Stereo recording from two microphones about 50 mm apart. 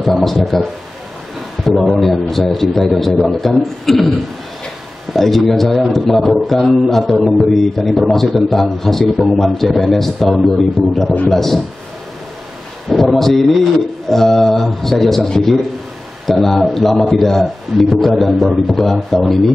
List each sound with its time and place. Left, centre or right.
0.0 s speech: centre
1.8 s speech: centre
5.1 s speech: centre
12.9 s speech: centre